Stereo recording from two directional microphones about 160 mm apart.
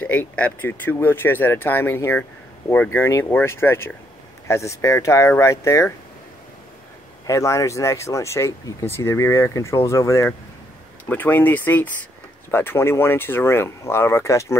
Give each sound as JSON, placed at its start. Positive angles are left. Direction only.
{"t": 0.0, "sound": "speech", "side_deg": 10}
{"t": 7.2, "sound": "speech", "side_deg": 20}